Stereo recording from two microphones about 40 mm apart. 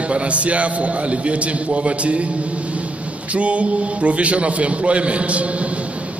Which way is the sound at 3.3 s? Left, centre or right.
Right.